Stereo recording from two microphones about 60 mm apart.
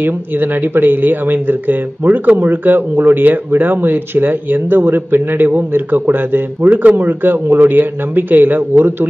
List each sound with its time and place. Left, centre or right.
0.0 s speech: right
6.7 s speech: right